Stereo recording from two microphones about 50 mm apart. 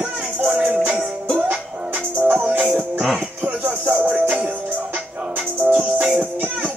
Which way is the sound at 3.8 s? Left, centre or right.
Right.